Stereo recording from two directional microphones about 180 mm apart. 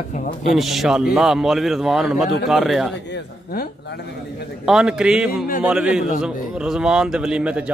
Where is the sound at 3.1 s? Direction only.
55° left (ahead or behind).